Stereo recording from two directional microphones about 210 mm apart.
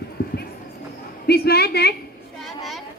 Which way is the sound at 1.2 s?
50° left (ahead or behind).